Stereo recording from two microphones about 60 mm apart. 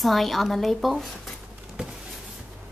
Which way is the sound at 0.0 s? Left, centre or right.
Centre.